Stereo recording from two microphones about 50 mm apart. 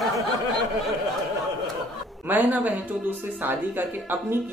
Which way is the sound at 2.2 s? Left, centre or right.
Right.